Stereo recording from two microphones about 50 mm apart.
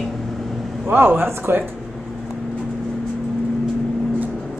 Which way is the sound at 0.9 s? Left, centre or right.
Right.